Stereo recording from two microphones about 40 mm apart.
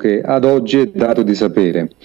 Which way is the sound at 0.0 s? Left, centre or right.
Centre.